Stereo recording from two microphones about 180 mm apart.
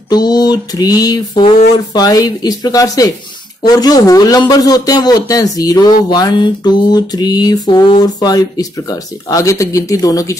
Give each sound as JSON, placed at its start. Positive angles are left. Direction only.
{"t": 0.1, "sound": "mantra", "side_deg": 20}